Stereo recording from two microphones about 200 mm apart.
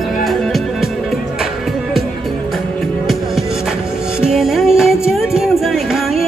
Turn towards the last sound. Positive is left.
turn(degrees=0)  # may be behind; listen again after turning